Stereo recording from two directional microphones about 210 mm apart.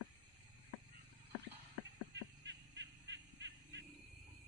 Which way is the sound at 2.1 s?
60° right (ahead or behind).